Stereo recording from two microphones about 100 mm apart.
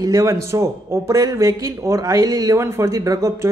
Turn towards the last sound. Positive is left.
turn(degrees=-30)  # may be behind; listen again after turning